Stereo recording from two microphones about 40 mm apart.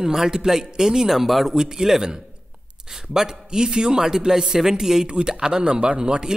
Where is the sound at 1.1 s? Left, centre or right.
Centre.